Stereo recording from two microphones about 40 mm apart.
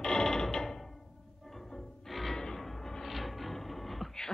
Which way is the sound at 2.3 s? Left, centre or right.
Centre.